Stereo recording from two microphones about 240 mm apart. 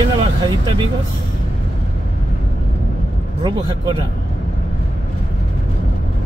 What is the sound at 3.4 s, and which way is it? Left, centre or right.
Speech, centre.